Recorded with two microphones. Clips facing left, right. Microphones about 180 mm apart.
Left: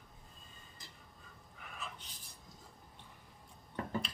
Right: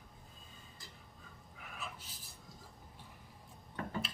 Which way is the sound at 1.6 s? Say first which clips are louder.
Even; 5° right (ahead or behind).